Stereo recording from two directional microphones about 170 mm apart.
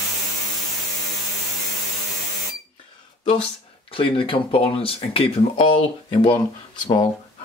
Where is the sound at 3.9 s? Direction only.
30° left (ahead or behind).